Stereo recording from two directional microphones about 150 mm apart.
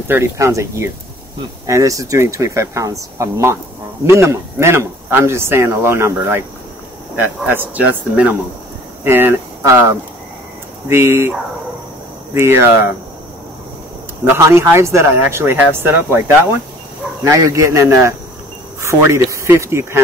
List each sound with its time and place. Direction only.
0.1 s speech: 20° right (ahead or behind)
12.4 s speech: 15° right (ahead or behind)
14.4 s speech: 15° right (ahead or behind)